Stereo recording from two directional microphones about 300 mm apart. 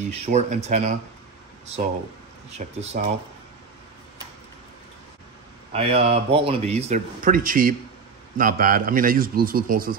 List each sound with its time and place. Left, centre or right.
0.0 s a man's voice: right
2.5 s a man's voice: right
5.7 s a man's voice: centre